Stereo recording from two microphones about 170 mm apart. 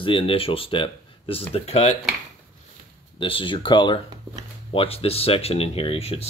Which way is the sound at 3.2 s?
30° left (ahead or behind).